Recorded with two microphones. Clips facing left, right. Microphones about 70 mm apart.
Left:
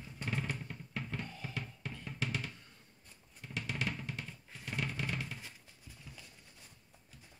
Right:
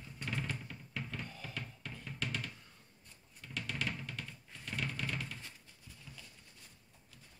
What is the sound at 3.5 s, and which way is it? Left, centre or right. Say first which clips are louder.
Drum: left 1 dB; left.